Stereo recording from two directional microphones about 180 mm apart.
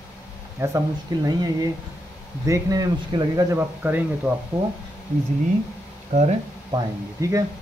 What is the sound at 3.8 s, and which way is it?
Speech, 10° right (ahead or behind).